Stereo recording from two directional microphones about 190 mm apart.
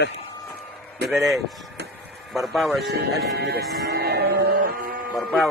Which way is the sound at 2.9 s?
60° right (ahead or behind).